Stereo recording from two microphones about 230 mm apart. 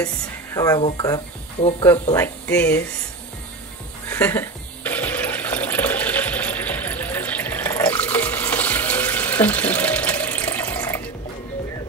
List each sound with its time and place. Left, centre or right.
0.6 s speech: centre
1.6 s speech: left
2.1 s speech: centre
4.1 s water: centre